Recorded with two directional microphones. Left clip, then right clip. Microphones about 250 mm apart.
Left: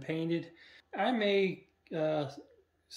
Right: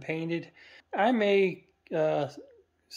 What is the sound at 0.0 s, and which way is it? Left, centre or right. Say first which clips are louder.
Speech: right 2 dB; centre.